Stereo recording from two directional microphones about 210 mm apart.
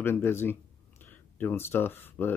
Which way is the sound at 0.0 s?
10° left (ahead or behind).